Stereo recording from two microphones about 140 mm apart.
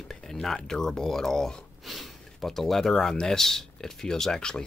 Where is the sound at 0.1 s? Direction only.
5° left (ahead or behind).